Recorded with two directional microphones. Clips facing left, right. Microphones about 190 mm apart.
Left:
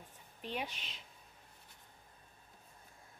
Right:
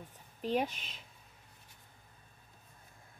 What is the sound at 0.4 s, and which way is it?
Speech, 40° right (ahead or behind).